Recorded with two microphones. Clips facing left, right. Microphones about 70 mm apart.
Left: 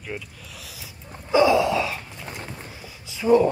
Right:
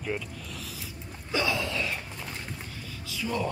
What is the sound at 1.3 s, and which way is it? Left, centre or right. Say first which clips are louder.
Gasp: left 11 dB; centre.